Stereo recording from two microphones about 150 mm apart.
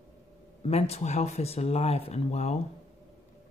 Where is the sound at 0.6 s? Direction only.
40° left (ahead or behind).